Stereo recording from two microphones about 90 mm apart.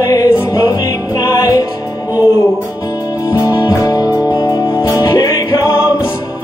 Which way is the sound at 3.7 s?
45° left (ahead or behind).